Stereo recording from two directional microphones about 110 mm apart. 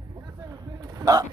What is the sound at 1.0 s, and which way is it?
Speech, 35° right (ahead or behind).